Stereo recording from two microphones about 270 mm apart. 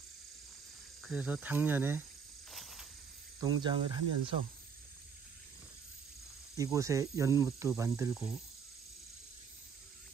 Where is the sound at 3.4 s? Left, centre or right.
Centre.